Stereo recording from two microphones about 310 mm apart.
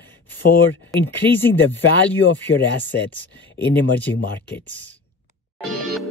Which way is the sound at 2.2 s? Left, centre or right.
Left.